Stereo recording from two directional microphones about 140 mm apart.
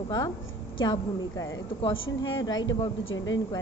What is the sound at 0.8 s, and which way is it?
Speech, 25° left (ahead or behind).